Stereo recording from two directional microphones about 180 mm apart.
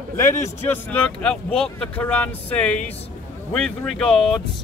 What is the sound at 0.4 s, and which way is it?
Speech, 10° left (ahead or behind).